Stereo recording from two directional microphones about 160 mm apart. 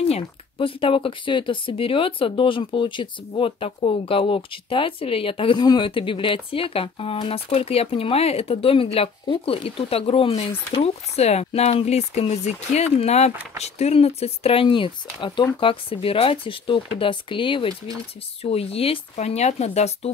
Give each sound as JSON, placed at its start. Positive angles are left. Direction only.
{"t": 0.1, "sound": "speech", "side_deg": 35}